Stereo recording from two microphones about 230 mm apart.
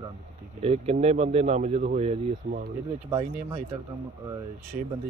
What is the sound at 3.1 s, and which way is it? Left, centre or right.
Speech, centre.